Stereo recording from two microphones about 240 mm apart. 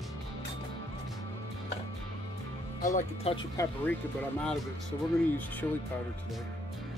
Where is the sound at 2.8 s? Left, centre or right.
Left.